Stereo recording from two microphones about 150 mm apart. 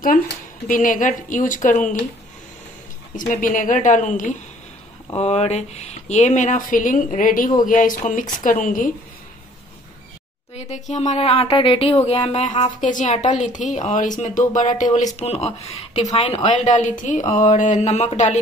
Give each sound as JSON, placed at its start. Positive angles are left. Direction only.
{"t": 0.7, "sound": "a woman's voice", "side_deg": 65}
{"t": 3.2, "sound": "a woman's voice", "side_deg": 65}
{"t": 5.1, "sound": "a woman's voice", "side_deg": 45}
{"t": 10.5, "sound": "a woman's voice", "side_deg": 50}
{"t": 16.1, "sound": "a woman's voice", "side_deg": 30}
{"t": 16.4, "sound": "a woman's voice", "side_deg": 55}